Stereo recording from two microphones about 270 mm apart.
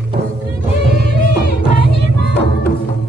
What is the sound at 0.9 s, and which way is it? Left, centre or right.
Music, left.